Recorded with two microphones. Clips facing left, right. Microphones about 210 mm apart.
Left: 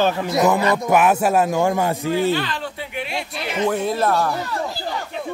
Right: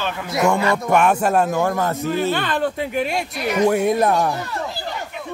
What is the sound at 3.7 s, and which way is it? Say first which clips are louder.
Speech: right 1 dB; 15° right (ahead or behind).